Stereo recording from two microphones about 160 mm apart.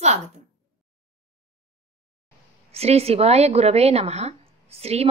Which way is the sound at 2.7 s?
40° right (ahead or behind).